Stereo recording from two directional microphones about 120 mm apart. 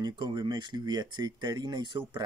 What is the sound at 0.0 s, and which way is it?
Speech, 35° right (ahead or behind).